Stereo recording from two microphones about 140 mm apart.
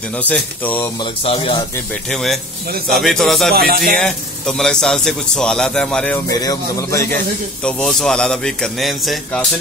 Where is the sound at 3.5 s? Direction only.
90° right.